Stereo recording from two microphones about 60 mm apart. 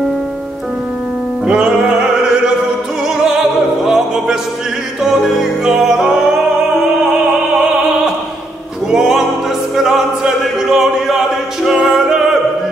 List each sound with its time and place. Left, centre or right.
1.4 s music: centre
3.8 s music: centre
8.9 s opera: centre
9.8 s music: centre